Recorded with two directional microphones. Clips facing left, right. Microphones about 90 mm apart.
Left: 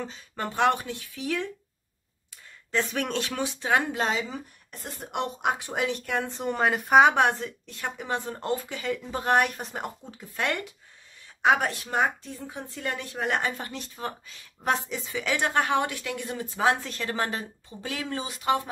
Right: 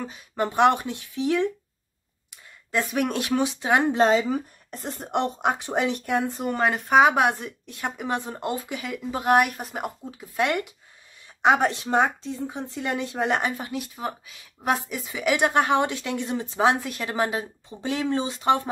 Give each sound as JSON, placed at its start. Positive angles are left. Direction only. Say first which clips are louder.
{"t": 0.0, "sound": "speech", "louder": "right 6 dB", "side_deg": -15}
{"t": 2.7, "sound": "speech", "louder": "right 3 dB", "side_deg": -10}
{"t": 3.9, "sound": "speech", "louder": "right 8 dB", "side_deg": -35}
{"t": 6.5, "sound": "speech", "louder": "even", "side_deg": 0}
{"t": 13.6, "sound": "speech", "louder": "right 4 dB", "side_deg": -5}